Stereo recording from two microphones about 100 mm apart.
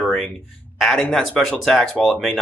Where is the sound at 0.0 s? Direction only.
Centre (ahead or behind).